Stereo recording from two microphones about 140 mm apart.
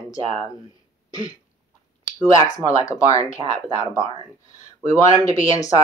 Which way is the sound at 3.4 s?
45° right (ahead or behind).